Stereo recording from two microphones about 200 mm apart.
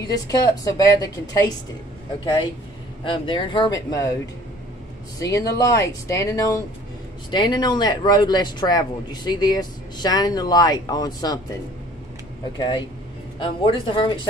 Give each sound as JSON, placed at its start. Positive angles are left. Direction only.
{"t": 0.0, "sound": "a woman's voice", "side_deg": 20}
{"t": 3.0, "sound": "speech", "side_deg": 25}
{"t": 5.2, "sound": "a woman's voice", "side_deg": 15}
{"t": 12.5, "sound": "speech", "side_deg": 20}